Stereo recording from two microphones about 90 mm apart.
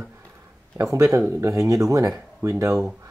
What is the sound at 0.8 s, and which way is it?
Speech, 35° right (ahead or behind).